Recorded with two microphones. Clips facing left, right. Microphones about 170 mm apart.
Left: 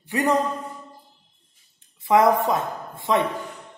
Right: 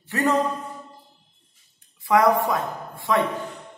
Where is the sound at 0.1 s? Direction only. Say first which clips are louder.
Left 1 dB; 15° left (ahead or behind).